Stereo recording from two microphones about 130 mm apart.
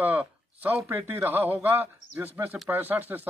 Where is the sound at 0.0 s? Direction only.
15° right (ahead or behind).